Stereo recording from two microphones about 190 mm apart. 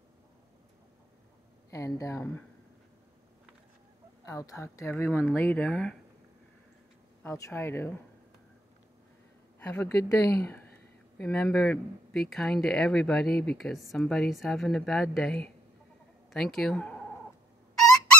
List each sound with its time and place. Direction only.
2.0 s speech: 15° left (ahead or behind)
4.3 s speech: 15° left (ahead or behind)
7.2 s speech: 15° left (ahead or behind)
9.6 s speech: 10° left (ahead or behind)